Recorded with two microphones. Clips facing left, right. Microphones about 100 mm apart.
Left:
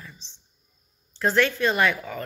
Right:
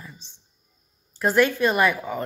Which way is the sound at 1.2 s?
10° right (ahead or behind).